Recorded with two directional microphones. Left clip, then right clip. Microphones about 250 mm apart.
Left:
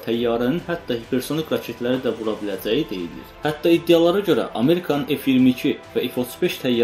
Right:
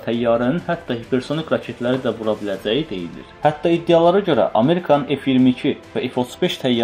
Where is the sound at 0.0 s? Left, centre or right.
Right.